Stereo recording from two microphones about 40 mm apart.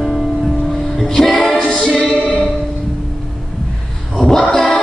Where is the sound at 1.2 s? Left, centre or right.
Centre.